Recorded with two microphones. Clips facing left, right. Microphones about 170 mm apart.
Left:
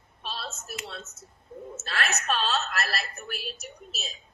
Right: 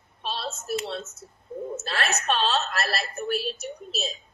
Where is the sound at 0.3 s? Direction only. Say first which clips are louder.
Right 8 dB; 35° right (ahead or behind).